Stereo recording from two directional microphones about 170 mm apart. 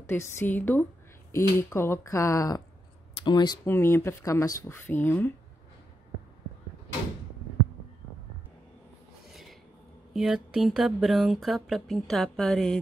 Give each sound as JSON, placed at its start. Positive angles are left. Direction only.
{"t": 0.0, "sound": "speech", "side_deg": 15}
{"t": 3.6, "sound": "speech", "side_deg": 15}
{"t": 9.3, "sound": "a sound", "side_deg": 0}
{"t": 10.1, "sound": "speech", "side_deg": 0}